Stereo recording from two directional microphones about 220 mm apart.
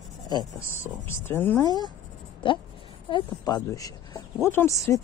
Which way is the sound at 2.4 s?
20° left (ahead or behind).